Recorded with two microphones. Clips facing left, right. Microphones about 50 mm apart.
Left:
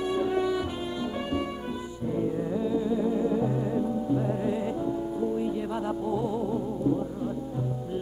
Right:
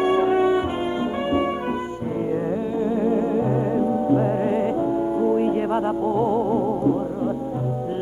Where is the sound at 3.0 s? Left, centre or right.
Right.